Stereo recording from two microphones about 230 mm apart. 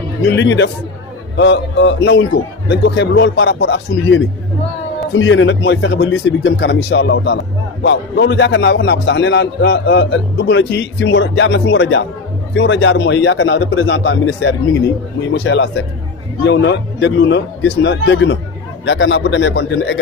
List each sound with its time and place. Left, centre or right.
0.2 s a man's voice: left